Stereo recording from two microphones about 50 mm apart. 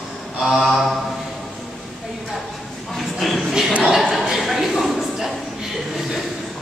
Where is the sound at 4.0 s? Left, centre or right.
Centre.